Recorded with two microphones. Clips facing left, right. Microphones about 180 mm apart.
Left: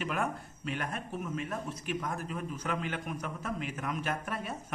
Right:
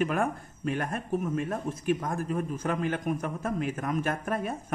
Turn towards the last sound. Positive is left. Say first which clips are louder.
# right 6 dB
turn(degrees=-50)  # may be behind; listen again after turning